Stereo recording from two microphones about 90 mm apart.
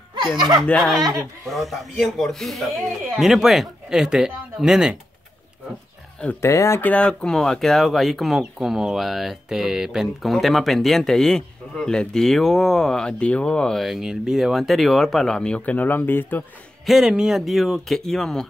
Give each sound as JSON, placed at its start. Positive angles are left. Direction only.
{"t": 0.4, "sound": "speech", "side_deg": -55}
{"t": 0.7, "sound": "speech", "side_deg": 10}
{"t": 6.4, "sound": "speech", "side_deg": 30}
{"t": 6.8, "sound": "speech", "side_deg": 15}
{"t": 16.8, "sound": "speech", "side_deg": -5}